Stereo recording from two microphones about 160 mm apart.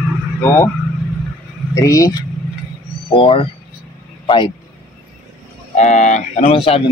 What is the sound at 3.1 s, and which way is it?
A man's voice, 35° left (ahead or behind).